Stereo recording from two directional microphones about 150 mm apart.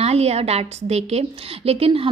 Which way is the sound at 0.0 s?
45° right (ahead or behind).